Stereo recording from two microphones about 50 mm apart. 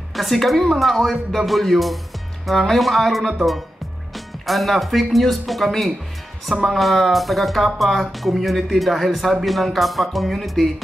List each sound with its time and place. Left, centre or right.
0.1 s speech: centre